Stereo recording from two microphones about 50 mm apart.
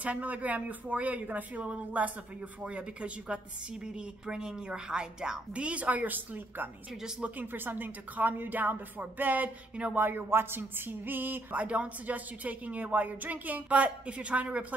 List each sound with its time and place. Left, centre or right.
0.0 s speech: right
6.9 s speech: centre
7.2 s speech: right
11.5 s speech: right